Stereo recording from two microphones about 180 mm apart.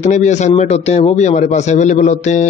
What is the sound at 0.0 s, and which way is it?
A man's voice, 40° left (ahead or behind).